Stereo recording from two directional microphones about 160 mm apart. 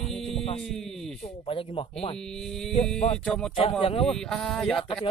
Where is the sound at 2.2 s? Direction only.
5° left (ahead or behind).